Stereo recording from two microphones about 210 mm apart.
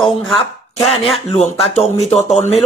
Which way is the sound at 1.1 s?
30° left (ahead or behind).